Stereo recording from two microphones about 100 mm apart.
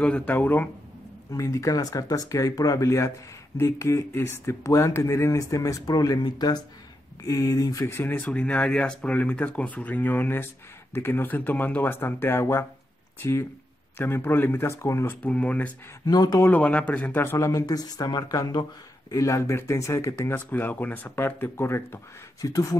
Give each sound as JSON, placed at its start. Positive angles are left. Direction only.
{"t": 0.0, "sound": "speech", "side_deg": 15}
{"t": 1.3, "sound": "speech", "side_deg": 30}
{"t": 7.8, "sound": "speech", "side_deg": 25}
{"t": 15.2, "sound": "speech", "side_deg": 10}
{"t": 16.1, "sound": "speech", "side_deg": 40}
{"t": 16.3, "sound": "speech", "side_deg": 20}
{"t": 17.5, "sound": "speech", "side_deg": 40}